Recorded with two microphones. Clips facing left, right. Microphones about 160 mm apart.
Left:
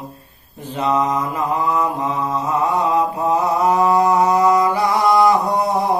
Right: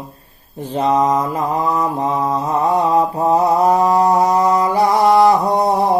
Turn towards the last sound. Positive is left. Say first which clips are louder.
# right 3 dB
turn(degrees=-35)  # may be behind; listen again after turning